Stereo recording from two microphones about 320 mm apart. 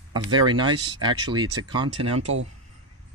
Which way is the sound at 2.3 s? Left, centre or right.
Right.